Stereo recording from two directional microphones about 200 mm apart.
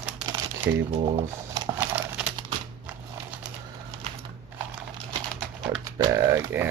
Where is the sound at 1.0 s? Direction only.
15° right (ahead or behind).